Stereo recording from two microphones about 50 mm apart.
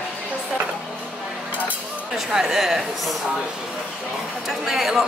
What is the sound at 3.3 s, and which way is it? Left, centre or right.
Speech, centre.